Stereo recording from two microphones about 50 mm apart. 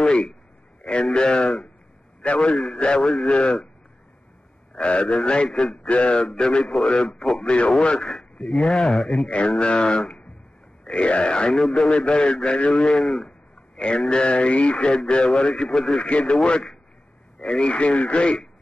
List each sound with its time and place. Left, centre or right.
0.0 s a man's voice: centre
4.7 s a man's voice: left; by 7.4 s centre
7.4 s a man's voice: left
8.0 s speech: centre
8.9 s speech: centre
9.5 s a man's voice: centre
16.1 s a man's voice: left
17.4 s a man's voice: centre